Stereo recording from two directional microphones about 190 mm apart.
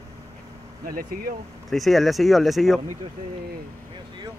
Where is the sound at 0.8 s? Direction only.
50° right (ahead or behind).